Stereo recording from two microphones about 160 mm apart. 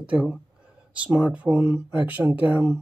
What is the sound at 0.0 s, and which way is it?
Speech, 5° right (ahead or behind).